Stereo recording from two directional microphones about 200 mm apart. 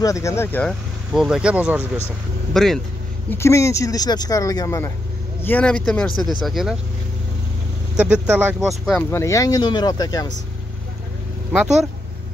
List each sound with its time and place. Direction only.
0.0 s speech: 15° left (ahead or behind)
3.3 s speech: 15° left (ahead or behind); by 6.8 s centre (ahead or behind)
7.9 s speech: 5° right (ahead or behind)
9.1 s speech: 15° left (ahead or behind)
11.5 s speech: 5° right (ahead or behind)